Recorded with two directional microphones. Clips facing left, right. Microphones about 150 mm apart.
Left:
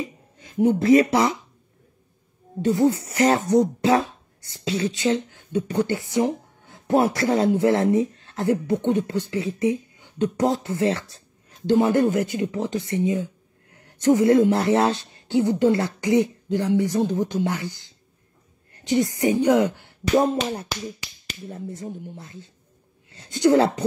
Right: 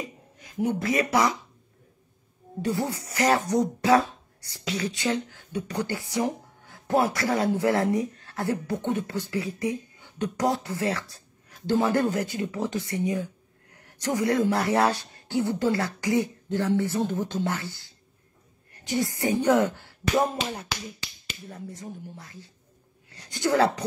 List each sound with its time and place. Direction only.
0.0 s speech: 25° left (ahead or behind)
2.6 s speech: 20° left (ahead or behind)
21.5 s speech: 25° left (ahead or behind)
23.0 s a sound: 25° left (ahead or behind)